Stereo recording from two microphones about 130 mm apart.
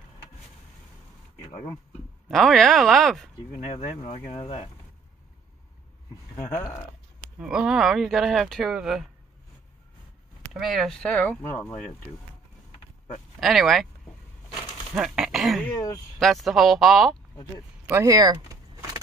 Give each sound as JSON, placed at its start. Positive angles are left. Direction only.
{"t": 2.2, "sound": "speech", "side_deg": 0}
{"t": 3.6, "sound": "speech", "side_deg": 50}
{"t": 6.4, "sound": "speech", "side_deg": 25}
{"t": 7.3, "sound": "speech", "side_deg": -5}
{"t": 10.5, "sound": "speech", "side_deg": 0}
{"t": 13.4, "sound": "speech", "side_deg": 0}
{"t": 15.0, "sound": "speech", "side_deg": -5}
{"t": 15.7, "sound": "speech", "side_deg": 25}
{"t": 16.2, "sound": "speech", "side_deg": 0}
{"t": 18.0, "sound": "vehicle", "side_deg": -30}